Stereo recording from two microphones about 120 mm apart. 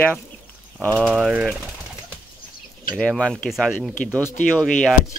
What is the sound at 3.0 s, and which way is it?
Speech, 5° left (ahead or behind).